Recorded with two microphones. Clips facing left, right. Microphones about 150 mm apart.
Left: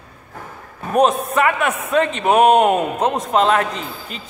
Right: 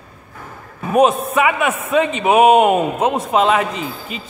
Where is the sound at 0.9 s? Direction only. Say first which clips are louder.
Right 2 dB; centre (ahead or behind).